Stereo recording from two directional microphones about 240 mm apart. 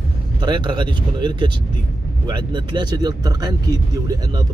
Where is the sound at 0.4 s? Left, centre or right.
Centre.